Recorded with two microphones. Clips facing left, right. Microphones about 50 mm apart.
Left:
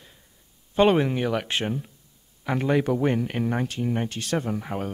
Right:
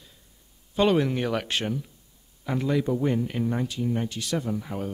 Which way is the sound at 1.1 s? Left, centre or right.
Centre.